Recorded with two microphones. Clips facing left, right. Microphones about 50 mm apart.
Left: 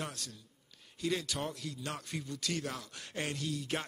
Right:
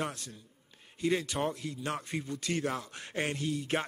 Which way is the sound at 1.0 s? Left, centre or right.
Right.